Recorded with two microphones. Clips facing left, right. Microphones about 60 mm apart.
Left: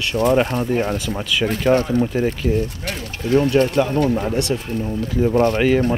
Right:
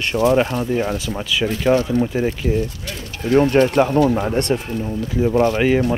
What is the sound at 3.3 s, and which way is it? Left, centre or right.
Speech, right.